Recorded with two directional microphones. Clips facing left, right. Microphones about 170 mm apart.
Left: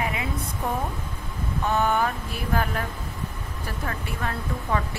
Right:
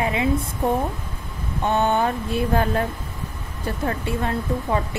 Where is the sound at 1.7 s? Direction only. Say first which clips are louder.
Right 3 dB; 25° right (ahead or behind).